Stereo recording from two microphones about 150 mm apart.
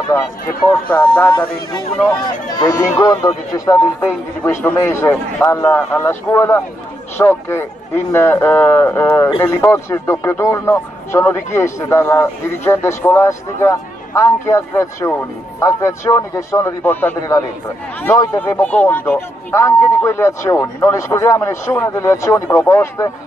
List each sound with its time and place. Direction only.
0.1 s a man's voice: 15° left (ahead or behind)
2.5 s a man's voice: 25° left (ahead or behind)
5.6 s a man's voice: 5° left (ahead or behind)
18.6 s speech: 10° left (ahead or behind)